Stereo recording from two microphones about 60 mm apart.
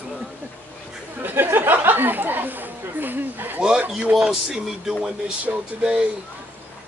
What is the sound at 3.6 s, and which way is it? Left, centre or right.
Speech, centre.